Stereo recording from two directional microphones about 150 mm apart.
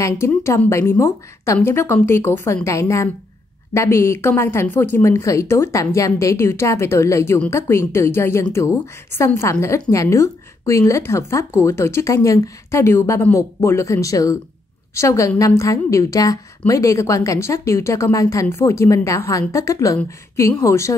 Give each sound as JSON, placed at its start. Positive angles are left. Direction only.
{"t": 0.3, "sound": "a woman's voice", "side_deg": 15}